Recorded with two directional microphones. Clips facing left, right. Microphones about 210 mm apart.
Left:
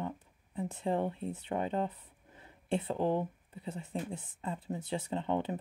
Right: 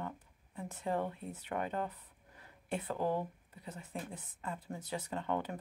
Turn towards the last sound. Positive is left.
turn(degrees=25)  # may be behind; listen again after turning